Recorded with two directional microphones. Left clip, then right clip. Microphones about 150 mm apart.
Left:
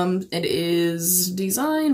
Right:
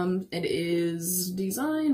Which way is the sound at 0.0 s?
10° left (ahead or behind).